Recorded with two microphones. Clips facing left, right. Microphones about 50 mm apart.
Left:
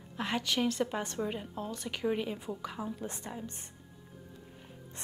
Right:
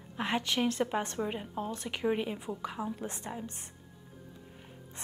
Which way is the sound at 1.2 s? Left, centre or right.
Centre.